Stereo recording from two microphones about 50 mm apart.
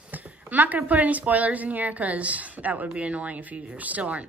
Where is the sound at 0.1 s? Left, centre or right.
Right.